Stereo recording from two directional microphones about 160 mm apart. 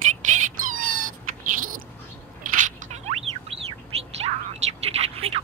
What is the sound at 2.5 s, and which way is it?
Bird, 50° right (ahead or behind).